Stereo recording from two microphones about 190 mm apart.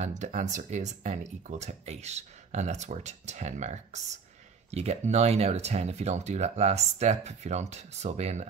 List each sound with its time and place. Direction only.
0.0 s speech: 40° right (ahead or behind)